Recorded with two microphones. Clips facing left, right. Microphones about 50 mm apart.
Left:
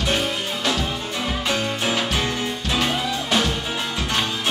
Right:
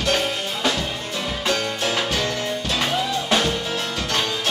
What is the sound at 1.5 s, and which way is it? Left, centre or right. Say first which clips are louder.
Music: right 1 dB; centre.